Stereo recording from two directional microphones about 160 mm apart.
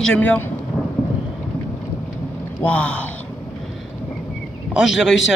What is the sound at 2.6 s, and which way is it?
Speech, 10° left (ahead or behind).